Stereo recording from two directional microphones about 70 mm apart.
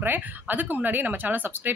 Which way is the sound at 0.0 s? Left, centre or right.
Right.